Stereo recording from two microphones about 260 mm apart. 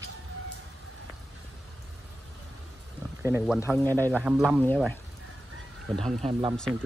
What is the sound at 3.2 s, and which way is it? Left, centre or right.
Speech, centre.